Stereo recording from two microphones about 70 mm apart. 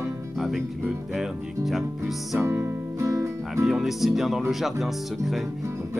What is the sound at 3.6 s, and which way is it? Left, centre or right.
Music, centre.